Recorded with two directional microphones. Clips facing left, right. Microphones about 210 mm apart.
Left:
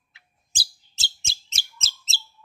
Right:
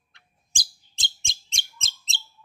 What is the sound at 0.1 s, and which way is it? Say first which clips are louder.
Bird: even; 5° left (ahead or behind).